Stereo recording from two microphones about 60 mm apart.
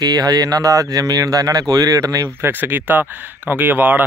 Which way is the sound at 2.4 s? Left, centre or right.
Right.